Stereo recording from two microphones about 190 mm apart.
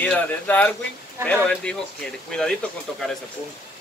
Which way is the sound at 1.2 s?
15° right (ahead or behind).